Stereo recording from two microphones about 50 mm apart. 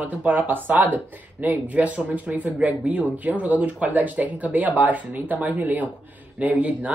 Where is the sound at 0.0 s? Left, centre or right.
Right.